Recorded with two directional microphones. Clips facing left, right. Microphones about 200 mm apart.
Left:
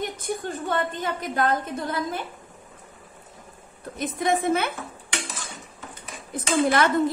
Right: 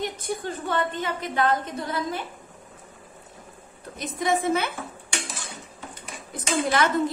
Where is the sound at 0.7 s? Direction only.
45° left (ahead or behind).